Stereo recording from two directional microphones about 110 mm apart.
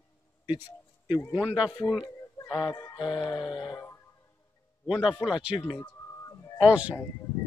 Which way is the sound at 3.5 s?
45° left (ahead or behind).